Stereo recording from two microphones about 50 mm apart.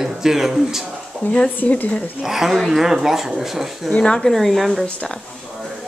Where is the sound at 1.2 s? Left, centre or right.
Left.